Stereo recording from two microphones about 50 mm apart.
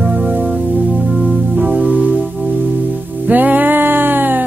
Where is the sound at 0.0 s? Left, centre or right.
Right.